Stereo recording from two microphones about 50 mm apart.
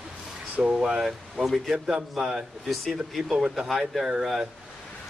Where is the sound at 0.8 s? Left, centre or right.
Centre.